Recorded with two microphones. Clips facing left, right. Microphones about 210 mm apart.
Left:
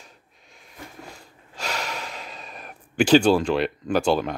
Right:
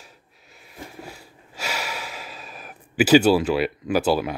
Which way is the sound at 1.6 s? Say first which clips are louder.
Even; 5° right (ahead or behind).